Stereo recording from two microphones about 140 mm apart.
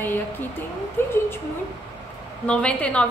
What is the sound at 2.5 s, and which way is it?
Speech, 5° left (ahead or behind).